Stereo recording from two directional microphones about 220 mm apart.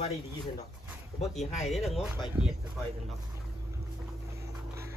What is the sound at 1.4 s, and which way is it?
Speech, 30° left (ahead or behind).